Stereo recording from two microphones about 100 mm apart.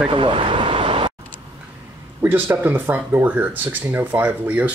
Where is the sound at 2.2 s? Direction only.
20° right (ahead or behind).